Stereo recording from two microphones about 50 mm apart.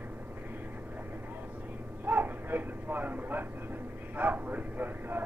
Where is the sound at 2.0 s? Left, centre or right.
Right.